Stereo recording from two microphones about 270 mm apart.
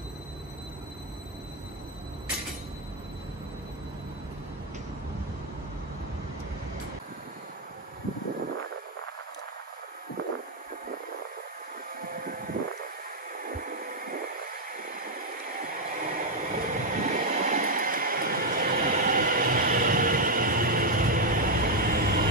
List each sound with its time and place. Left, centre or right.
12.1 s vehicle: right
13.4 s a sound: right
16.1 s train: right